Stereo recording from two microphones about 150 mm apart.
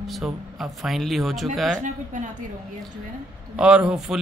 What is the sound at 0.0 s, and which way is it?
Speech, centre (ahead or behind).